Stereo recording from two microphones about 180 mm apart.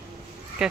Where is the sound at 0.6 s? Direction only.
5° right (ahead or behind).